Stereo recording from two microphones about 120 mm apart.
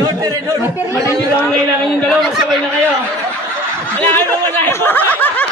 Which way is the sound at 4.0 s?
20° left (ahead or behind).